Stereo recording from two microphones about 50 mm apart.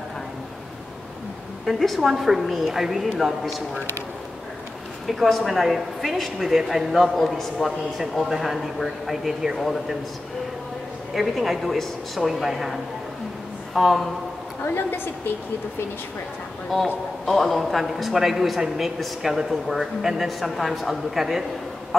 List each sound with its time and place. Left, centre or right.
1.7 s speech: centre
5.0 s speech: centre
11.1 s speech: centre
14.6 s a woman's voice: left
16.7 s speech: centre